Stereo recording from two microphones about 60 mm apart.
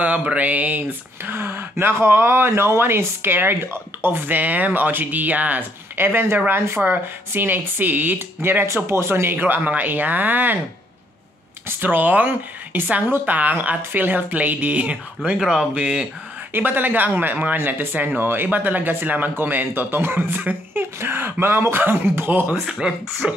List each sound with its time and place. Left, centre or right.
0.0 s speech: right
1.3 s speech: right
11.6 s speech: right
15.4 s speech: centre
16.5 s speech: right
22.7 s speech: centre